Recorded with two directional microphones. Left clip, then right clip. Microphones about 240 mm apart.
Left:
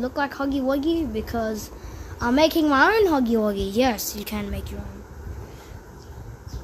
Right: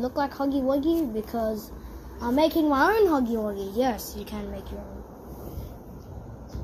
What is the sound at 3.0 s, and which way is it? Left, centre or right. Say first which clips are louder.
Speech: left 3 dB; left.